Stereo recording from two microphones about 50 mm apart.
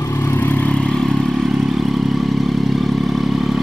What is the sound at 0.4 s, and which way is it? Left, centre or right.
Vehicle, left.